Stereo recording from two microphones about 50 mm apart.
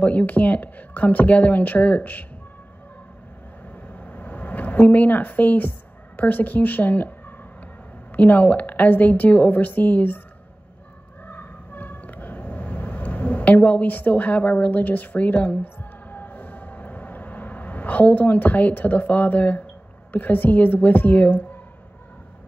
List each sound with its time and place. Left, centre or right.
0.0 s a woman's voice: left
3.7 s vehicle: left
4.8 s a woman's voice: left
11.2 s vehicle: left
20.1 s a woman's voice: left